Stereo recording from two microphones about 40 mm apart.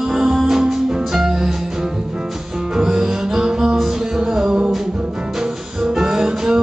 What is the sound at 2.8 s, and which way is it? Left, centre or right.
Music, centre.